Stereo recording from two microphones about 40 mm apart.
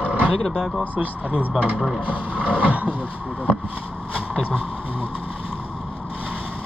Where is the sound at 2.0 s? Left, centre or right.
Right.